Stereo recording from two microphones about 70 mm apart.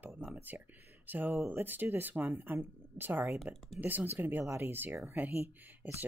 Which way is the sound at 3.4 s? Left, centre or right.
Centre.